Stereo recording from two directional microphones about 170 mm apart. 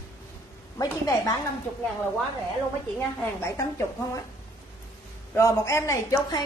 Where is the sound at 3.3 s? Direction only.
15° left (ahead or behind).